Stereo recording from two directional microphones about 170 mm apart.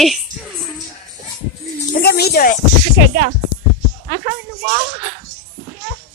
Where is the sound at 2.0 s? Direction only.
70° left (ahead or behind).